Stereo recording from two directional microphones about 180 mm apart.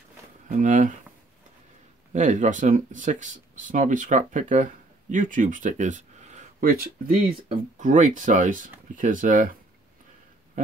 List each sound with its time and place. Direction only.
0.5 s speech: 45° right (ahead or behind)
2.1 s speech: 45° right (ahead or behind)